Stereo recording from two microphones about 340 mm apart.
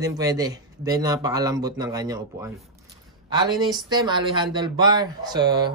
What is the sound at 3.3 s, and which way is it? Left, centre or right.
Speech, centre.